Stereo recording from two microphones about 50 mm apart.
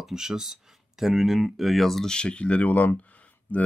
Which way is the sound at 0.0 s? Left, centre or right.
Centre.